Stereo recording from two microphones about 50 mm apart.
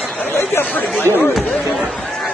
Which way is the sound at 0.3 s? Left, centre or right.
Left.